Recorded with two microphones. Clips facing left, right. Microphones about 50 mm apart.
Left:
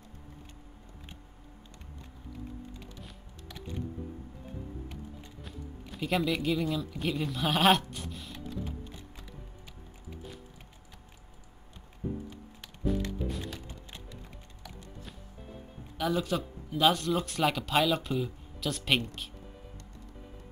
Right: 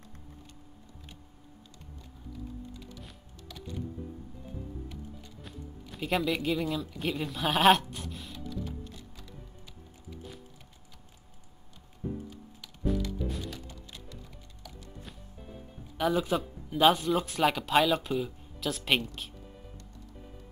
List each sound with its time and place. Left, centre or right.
2.7 s music: left
5.4 s speech: centre
8.8 s music: left
12.0 s music: centre
13.5 s music: left
15.0 s music: centre
16.1 s speech: centre